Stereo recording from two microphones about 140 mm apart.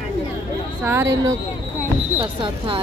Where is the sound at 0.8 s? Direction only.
15° right (ahead or behind).